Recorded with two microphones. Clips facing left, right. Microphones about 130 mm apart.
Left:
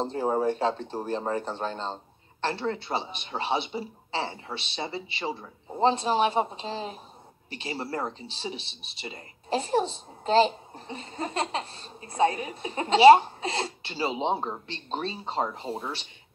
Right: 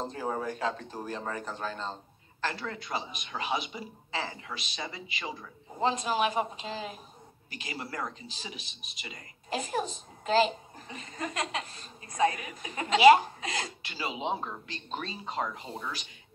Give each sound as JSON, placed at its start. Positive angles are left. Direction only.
{"t": 0.0, "sound": "speech", "side_deg": 30}